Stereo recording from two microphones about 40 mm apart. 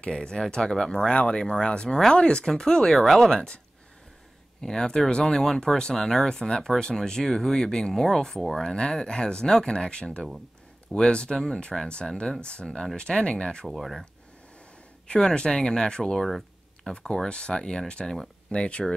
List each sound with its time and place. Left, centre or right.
0.1 s speech: centre
3.0 s speech: centre
4.6 s speech: centre
8.6 s speech: centre
13.7 s speech: centre
15.0 s speech: left